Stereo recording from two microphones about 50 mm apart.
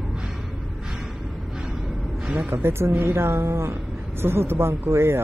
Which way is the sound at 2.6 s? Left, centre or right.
Right.